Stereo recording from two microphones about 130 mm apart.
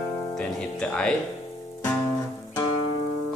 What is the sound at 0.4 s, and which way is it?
Speech, 5° left (ahead or behind).